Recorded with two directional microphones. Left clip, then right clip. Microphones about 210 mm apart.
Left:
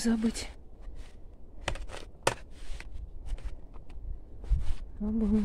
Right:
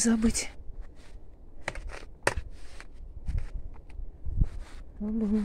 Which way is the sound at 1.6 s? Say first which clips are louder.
Even; 30° left (ahead or behind).